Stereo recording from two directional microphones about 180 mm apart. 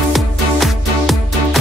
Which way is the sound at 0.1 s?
Centre (ahead or behind).